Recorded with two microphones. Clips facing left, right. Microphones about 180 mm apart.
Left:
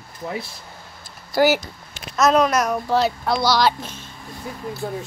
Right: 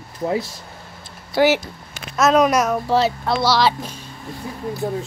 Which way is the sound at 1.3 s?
Centre (ahead or behind).